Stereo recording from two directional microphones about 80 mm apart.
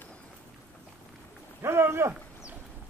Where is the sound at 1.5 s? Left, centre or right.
Right.